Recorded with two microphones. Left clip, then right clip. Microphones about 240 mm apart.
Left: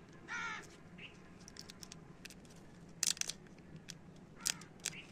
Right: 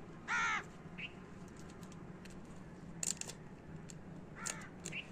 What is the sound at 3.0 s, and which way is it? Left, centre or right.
Crushing, centre.